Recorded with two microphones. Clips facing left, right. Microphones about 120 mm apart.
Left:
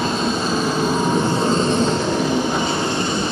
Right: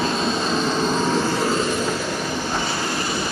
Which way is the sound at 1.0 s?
25° left (ahead or behind).